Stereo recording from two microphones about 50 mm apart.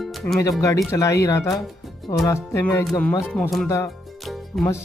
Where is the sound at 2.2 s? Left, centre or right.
Left.